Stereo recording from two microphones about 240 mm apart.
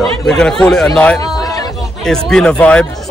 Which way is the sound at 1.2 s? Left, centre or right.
Centre.